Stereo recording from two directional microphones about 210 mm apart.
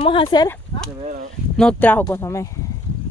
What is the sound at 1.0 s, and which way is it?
Speech, 35° right (ahead or behind).